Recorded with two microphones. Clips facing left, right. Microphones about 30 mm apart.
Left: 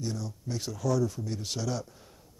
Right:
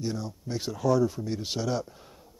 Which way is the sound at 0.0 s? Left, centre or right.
Centre.